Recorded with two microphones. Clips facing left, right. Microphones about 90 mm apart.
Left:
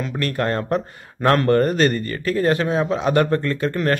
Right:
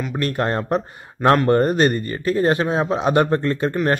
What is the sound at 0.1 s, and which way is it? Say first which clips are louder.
Speech: right 1 dB; 25° right (ahead or behind).